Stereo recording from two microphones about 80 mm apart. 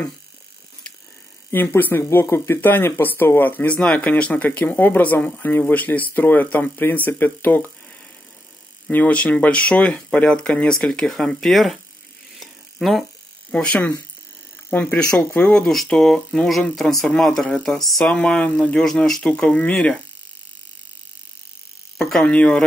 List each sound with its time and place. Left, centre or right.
1.5 s speech: left
8.9 s speech: centre
12.4 s a sound: centre
13.5 s speech: centre
15.6 s speech: centre
22.2 s speech: centre